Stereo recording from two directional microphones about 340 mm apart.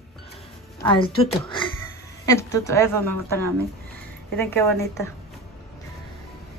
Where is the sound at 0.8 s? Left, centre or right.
Centre.